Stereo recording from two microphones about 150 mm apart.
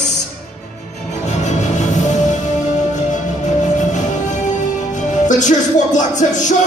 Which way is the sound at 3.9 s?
55° left (ahead or behind).